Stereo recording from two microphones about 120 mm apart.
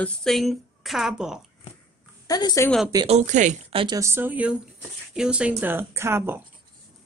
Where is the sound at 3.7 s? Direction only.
45° right (ahead or behind).